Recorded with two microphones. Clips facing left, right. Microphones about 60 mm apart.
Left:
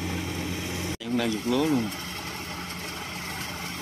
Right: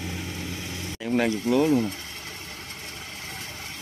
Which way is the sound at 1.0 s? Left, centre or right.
Right.